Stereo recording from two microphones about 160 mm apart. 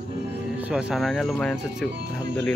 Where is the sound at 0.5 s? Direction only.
5° right (ahead or behind).